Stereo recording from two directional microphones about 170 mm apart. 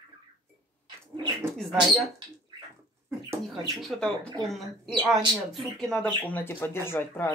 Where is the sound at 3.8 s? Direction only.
Centre (ahead or behind).